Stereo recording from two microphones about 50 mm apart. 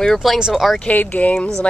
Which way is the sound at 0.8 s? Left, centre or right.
Left.